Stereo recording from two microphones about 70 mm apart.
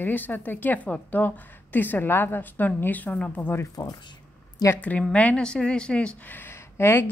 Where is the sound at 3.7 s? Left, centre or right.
Left.